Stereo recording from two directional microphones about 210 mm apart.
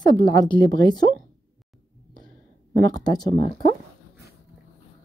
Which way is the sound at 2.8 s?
20° left (ahead or behind).